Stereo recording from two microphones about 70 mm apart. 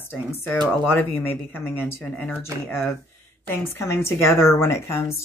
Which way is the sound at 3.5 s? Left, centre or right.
Left.